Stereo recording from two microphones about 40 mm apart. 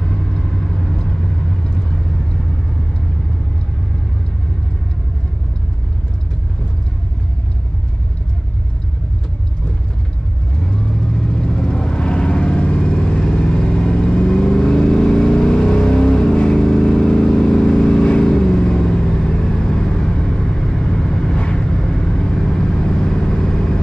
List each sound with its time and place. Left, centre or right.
11.3 s vehicle: left